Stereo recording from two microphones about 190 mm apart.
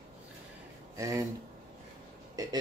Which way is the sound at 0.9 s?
15° right (ahead or behind).